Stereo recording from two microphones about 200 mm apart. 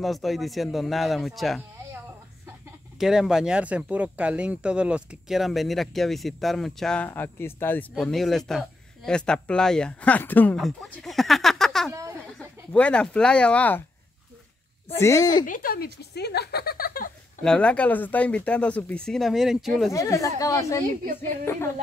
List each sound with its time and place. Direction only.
0.0 s speech: centre (ahead or behind)
3.0 s speech: 5° right (ahead or behind)
11.9 s a sound: 15° right (ahead or behind)
12.4 s speech: 5° left (ahead or behind)
15.0 s speech: 15° left (ahead or behind)
15.4 s speech: 45° left (ahead or behind)
17.4 s speech: 5° left (ahead or behind)
19.9 s speech: 15° left (ahead or behind)